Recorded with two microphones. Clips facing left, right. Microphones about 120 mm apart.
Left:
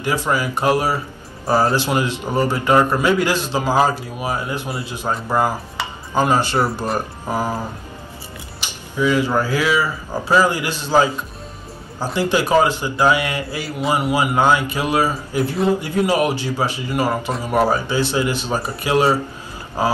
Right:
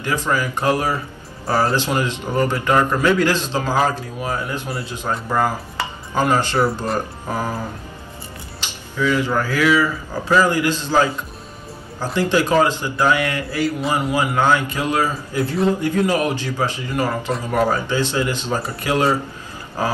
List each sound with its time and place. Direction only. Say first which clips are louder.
0.0 s speech: left 1 dB; 15° left (ahead or behind)
6.1 s speech: left 1 dB; 15° left (ahead or behind)
8.9 s speech: left 2 dB; 15° left (ahead or behind)